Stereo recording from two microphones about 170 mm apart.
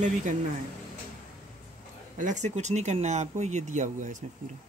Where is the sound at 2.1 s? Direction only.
45° right (ahead or behind).